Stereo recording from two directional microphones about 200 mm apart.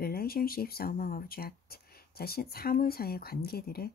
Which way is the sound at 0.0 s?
50° left (ahead or behind).